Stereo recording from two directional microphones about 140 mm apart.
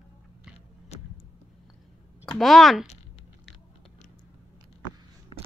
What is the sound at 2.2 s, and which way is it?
Speech, 5° left (ahead or behind).